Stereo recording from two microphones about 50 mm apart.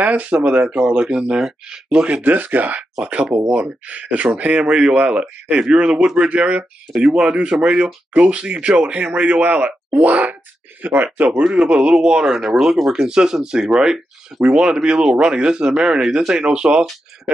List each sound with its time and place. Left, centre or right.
0.0 s speech: right
0.7 s speech: centre
2.2 s speech: right
10.8 s speech: right
11.4 s speech: centre